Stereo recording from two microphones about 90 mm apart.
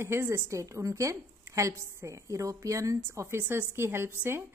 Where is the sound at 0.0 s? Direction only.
30° right (ahead or behind).